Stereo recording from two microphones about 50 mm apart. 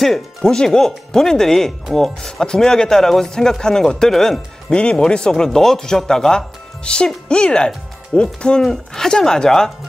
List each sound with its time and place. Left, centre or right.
0.0 s speech: centre